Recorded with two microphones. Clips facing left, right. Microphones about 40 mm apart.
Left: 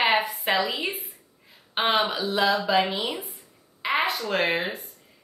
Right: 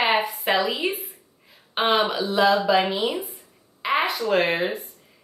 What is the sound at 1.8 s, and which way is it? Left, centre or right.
Speech, centre.